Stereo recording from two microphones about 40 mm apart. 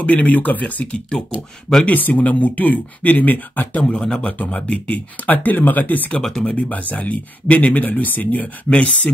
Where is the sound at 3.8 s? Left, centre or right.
Centre.